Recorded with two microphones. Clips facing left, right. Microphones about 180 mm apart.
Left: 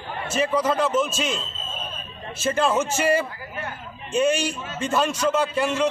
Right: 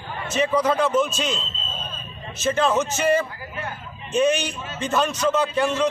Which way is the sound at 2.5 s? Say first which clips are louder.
Even; 5° left (ahead or behind).